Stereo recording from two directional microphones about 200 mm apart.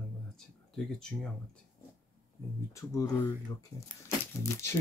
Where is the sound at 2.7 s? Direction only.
15° left (ahead or behind).